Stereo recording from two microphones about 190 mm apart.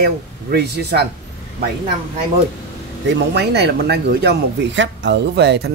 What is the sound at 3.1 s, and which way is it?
A man's voice, 60° right (ahead or behind).